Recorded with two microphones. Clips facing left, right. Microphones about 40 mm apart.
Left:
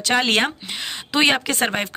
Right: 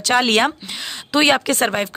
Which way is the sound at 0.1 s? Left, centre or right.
Centre.